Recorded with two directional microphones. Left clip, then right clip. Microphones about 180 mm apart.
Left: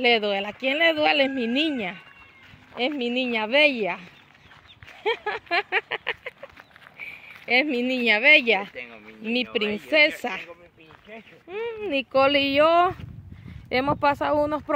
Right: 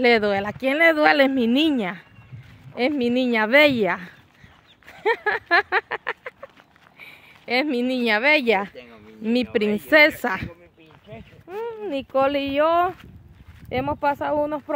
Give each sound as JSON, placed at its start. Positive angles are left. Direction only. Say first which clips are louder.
{"t": 0.0, "sound": "a woman's voice", "louder": "right 3 dB", "side_deg": -40}
{"t": 5.7, "sound": "a sound", "louder": "right 2 dB", "side_deg": -20}
{"t": 7.0, "sound": "speech", "louder": "left 5 dB", "side_deg": -20}
{"t": 9.2, "sound": "a woman's voice", "louder": "right 3 dB", "side_deg": -40}
{"t": 11.4, "sound": "speech", "louder": "even", "side_deg": -10}